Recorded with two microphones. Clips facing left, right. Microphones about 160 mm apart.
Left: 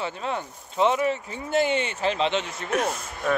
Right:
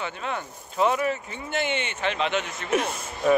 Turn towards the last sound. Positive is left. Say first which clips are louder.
# right 3 dB
turn(degrees=0)  # may be behind; listen again after turning